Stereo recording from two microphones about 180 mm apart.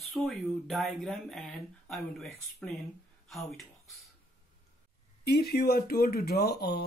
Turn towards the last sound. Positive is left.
turn(degrees=60)  # may be behind; listen again after turning